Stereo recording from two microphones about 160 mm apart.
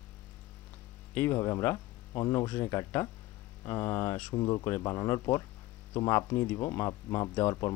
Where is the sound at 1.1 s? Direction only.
15° left (ahead or behind).